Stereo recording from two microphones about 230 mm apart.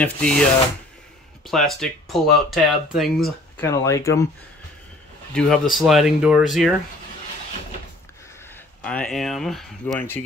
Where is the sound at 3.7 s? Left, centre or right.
Centre.